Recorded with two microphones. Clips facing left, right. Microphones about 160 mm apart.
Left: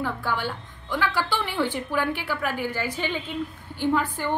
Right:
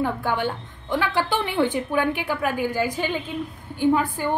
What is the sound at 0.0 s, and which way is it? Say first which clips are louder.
A woman's voice: right 4 dB; 20° right (ahead or behind).